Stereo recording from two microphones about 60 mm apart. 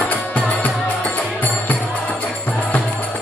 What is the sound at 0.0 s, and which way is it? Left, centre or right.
Music, left.